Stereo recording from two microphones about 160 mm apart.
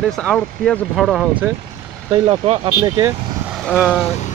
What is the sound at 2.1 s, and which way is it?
Speech, 40° right (ahead or behind).